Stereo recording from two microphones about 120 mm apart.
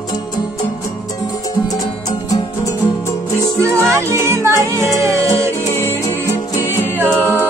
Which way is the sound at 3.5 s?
25° right (ahead or behind).